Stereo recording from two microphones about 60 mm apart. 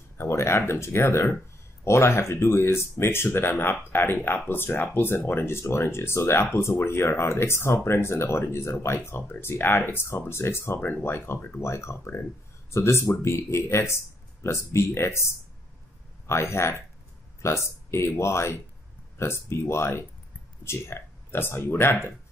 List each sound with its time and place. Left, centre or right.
0.2 s speech: left
10.8 s speech: left
11.1 s speech: left
16.3 s speech: left